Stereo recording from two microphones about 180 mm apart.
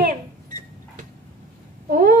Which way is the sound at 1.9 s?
50° right (ahead or behind).